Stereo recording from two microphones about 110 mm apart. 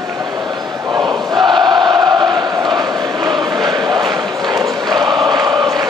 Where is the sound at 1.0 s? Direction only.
40° right (ahead or behind).